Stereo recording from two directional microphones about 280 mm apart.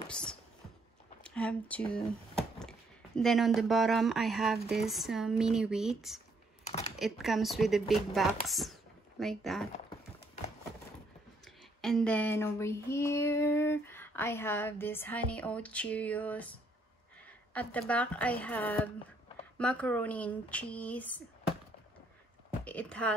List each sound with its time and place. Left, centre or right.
0.1 s speech: centre
1.2 s a sound: centre
3.2 s speech: centre
11.4 s child singing: centre
17.6 s speech: centre
22.7 s speech: centre